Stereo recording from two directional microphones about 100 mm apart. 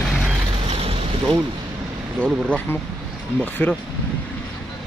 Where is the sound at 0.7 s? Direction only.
85° right.